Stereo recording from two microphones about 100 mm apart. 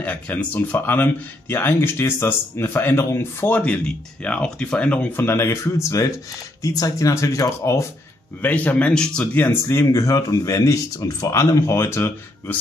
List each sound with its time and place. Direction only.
0.0 s speech: 15° left (ahead or behind); by 7.8 s 30° left (ahead or behind)
8.4 s speech: 15° left (ahead or behind)